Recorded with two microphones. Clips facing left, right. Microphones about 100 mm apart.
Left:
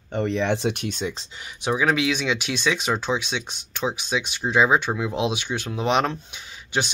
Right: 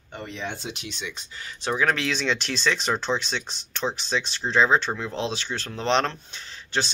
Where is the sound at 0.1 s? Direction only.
60° left (ahead or behind).